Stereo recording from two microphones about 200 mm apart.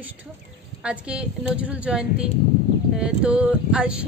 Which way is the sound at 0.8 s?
5° right (ahead or behind).